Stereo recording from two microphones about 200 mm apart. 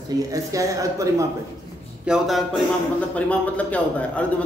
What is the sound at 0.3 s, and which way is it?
Speech, 15° right (ahead or behind).